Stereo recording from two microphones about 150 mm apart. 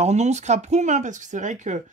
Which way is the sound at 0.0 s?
50° right (ahead or behind).